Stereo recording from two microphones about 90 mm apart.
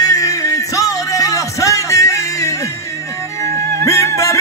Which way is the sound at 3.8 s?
35° left (ahead or behind).